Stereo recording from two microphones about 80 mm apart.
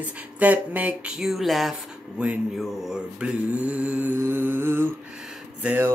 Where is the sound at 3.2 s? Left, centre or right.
Centre.